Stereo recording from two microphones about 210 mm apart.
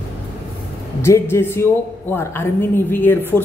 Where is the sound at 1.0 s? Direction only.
10° left (ahead or behind).